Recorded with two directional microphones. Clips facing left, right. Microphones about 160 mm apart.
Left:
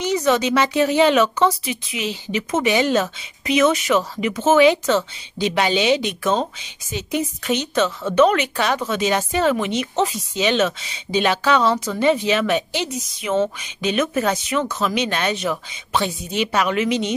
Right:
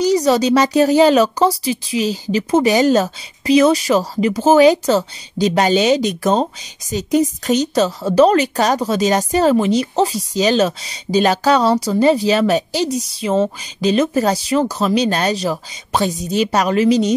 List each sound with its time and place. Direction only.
0.0 s a woman's voice: 35° right (ahead or behind)